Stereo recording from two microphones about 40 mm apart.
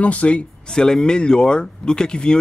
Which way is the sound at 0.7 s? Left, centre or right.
Centre.